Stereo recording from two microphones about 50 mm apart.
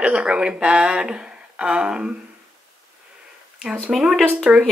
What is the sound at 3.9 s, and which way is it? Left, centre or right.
Speech, centre.